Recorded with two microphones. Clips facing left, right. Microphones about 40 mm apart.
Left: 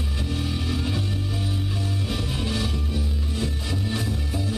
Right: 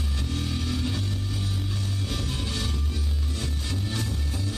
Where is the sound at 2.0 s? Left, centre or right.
Centre.